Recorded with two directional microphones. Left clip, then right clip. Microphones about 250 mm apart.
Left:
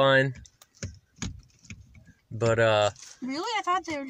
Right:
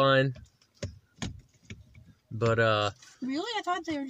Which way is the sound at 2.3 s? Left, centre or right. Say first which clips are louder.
Left 3 dB; centre.